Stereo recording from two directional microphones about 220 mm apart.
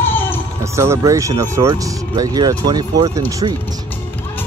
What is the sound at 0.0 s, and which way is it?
Music, 10° left (ahead or behind).